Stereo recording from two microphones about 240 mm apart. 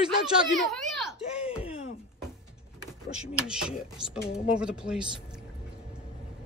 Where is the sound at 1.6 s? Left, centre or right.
Left.